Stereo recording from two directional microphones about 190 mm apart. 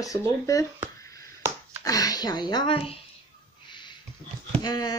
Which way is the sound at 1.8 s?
20° left (ahead or behind).